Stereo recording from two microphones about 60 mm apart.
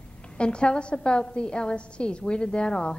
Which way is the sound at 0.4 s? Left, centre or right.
Centre.